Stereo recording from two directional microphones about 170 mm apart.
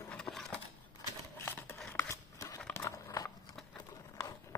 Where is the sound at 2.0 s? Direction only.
20° left (ahead or behind).